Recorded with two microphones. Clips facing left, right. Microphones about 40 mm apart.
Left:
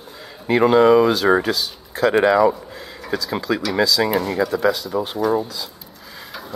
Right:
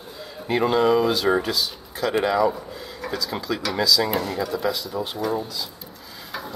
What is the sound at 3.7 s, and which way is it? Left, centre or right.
Speech, centre.